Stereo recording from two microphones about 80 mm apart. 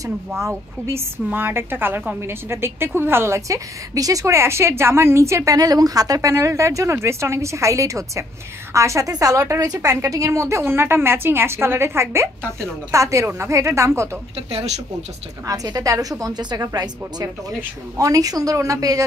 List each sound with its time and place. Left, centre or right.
0.8 s a woman's voice: right
15.4 s a woman's voice: right